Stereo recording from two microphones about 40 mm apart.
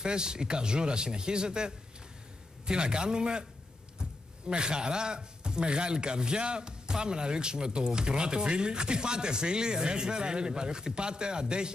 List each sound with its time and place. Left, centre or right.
0.0 s speech: centre